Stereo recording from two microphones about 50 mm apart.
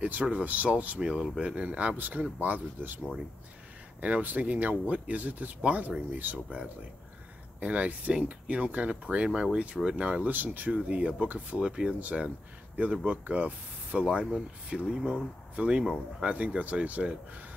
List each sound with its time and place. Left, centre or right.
0.2 s speech: right
1.4 s speech: right
4.0 s speech: right
7.6 s speech: right
10.3 s speech: right
11.6 s speech: centre